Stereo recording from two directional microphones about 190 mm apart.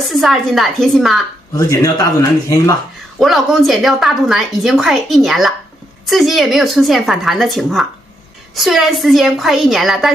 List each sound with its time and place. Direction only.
0.1 s a woman's voice: centre (ahead or behind)
1.5 s speech: 20° left (ahead or behind)
3.2 s a woman's voice: centre (ahead or behind)